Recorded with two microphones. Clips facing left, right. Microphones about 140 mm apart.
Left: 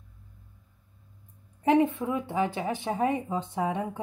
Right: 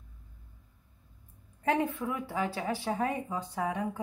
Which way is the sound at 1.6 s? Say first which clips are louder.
Left 6 dB; 20° left (ahead or behind).